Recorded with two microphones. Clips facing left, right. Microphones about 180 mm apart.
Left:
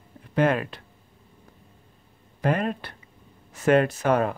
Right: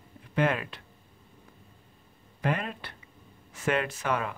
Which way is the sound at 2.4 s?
40° left (ahead or behind).